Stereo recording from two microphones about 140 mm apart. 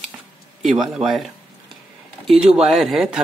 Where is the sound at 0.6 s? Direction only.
5° right (ahead or behind).